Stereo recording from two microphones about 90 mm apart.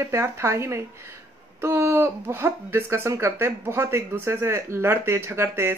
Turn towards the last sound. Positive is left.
turn(degrees=-30)  # may be behind; listen again after turning